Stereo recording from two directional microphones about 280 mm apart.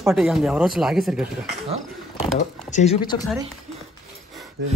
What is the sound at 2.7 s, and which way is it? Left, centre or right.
Speech, left.